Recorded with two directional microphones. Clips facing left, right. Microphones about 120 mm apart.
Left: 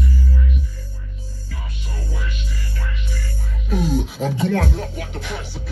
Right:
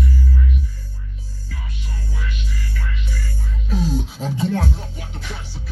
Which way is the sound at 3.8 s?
60° left (ahead or behind).